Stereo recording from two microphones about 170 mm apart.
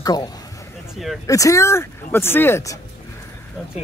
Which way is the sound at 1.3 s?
20° left (ahead or behind).